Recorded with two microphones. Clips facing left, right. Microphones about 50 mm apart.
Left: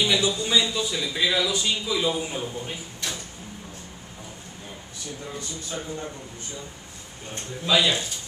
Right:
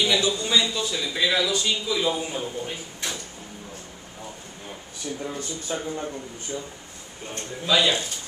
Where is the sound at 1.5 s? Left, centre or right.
Centre.